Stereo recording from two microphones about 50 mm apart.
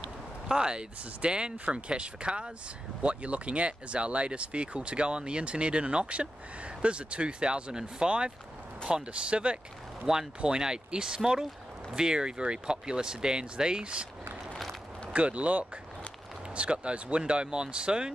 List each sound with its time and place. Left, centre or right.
0.5 s speech: centre
15.1 s speech: right